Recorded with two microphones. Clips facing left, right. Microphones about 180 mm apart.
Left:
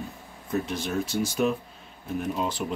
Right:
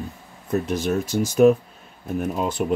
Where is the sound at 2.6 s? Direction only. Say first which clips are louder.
Right 8 dB; 55° right (ahead or behind).